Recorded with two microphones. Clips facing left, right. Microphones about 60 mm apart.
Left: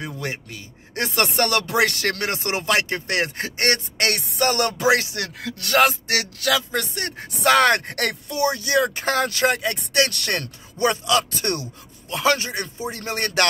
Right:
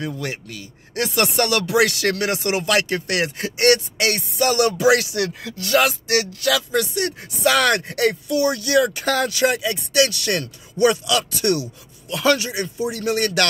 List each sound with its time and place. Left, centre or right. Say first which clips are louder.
0.0 s speech: right 2 dB; left
4.1 s music: right 2 dB; left
4.4 s speech: right 3 dB; left
8.3 s speech: right 3 dB; left
9.3 s speech: right 1 dB; left
10.8 s speech: right 2 dB; left